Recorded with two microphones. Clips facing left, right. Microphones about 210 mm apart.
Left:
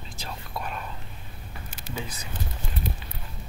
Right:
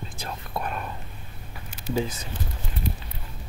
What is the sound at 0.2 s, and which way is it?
Whispering, 55° right (ahead or behind).